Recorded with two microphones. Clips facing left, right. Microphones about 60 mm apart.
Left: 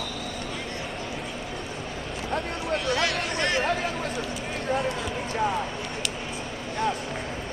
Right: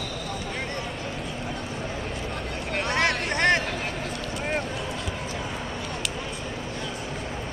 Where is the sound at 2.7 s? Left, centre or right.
Right.